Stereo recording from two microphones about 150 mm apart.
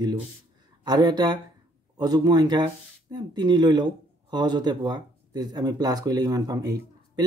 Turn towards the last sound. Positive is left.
turn(degrees=-25)  # may be behind; listen again after turning